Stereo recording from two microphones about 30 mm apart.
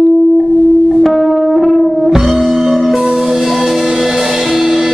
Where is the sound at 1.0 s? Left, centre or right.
Centre.